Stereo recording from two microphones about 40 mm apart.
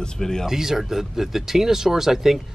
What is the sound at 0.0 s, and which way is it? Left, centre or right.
Speech, centre.